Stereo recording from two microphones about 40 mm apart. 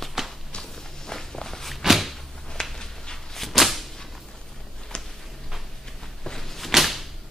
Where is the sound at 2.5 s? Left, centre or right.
Centre.